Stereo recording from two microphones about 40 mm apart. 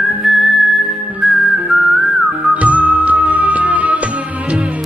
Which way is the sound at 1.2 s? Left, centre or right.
Centre.